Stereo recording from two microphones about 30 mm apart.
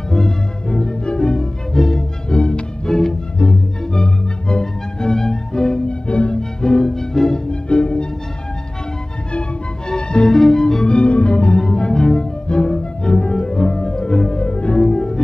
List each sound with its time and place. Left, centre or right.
0.1 s music: centre
2.2 s music: left
2.9 s music: centre
5.1 s music: centre
5.9 s music: left
6.3 s music: left
7.4 s music: left
9.8 s music: left
10.2 s music: centre
10.9 s music: left
11.5 s music: centre
12.4 s music: left
13.2 s music: centre; by 14.9 s left
14.9 s music: centre